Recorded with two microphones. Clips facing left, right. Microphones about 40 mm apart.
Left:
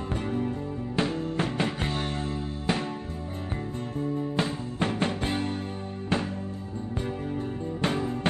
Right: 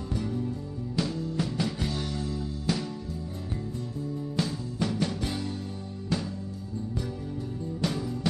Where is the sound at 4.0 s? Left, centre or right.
Left.